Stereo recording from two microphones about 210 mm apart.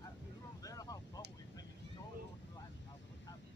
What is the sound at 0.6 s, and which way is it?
Vehicle, 15° left (ahead or behind).